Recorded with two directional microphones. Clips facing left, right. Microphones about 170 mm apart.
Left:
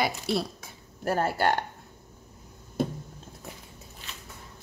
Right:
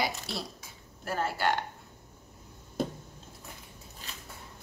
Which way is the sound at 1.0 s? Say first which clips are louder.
Left 5 dB; 45° left (ahead or behind).